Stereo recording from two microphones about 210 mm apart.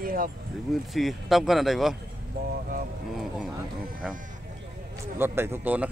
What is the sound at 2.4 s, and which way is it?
Speech, 50° right (ahead or behind).